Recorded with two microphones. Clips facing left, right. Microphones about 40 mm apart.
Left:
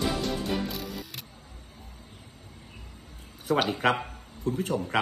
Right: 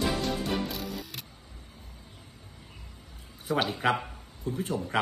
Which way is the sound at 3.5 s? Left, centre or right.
Left.